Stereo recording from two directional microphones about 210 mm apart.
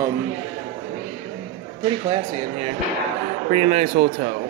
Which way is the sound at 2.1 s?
30° right (ahead or behind).